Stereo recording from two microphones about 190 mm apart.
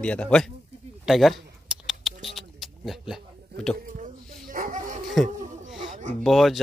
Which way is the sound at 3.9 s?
45° right (ahead or behind).